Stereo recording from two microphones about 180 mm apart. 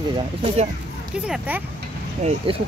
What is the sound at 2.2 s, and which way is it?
Speech, 30° right (ahead or behind).